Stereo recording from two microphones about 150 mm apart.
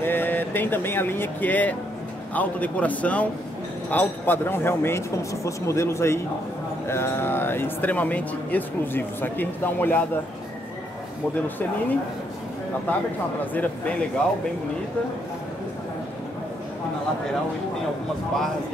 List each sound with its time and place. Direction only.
0.0 s speech: 15° left (ahead or behind)
13.6 s speech: 10° left (ahead or behind)